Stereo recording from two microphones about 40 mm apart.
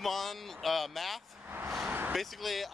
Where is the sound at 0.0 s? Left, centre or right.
Centre.